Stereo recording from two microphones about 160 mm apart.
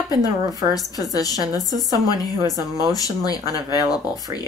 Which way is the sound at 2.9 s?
25° left (ahead or behind).